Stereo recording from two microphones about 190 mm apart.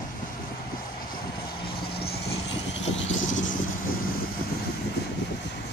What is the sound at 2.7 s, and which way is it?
Vehicle, 80° left.